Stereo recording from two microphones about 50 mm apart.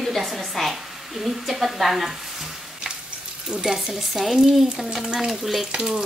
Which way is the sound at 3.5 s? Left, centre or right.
Centre.